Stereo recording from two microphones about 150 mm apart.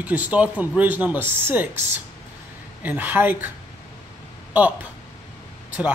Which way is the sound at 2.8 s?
10° right (ahead or behind).